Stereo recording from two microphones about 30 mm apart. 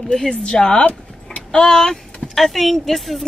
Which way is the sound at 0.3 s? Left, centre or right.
Left.